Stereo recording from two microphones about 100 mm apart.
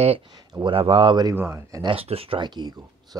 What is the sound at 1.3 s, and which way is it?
Speech, 30° right (ahead or behind).